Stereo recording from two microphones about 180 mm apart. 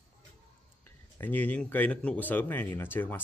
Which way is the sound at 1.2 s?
10° left (ahead or behind).